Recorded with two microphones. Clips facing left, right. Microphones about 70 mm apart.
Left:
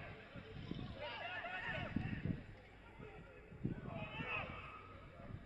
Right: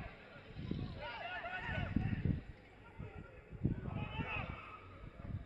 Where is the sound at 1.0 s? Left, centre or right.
Centre.